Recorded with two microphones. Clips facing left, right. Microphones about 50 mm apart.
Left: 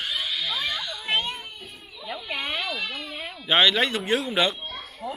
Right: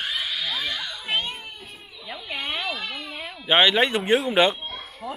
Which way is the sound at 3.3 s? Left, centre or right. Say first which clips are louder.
Right 2 dB; right.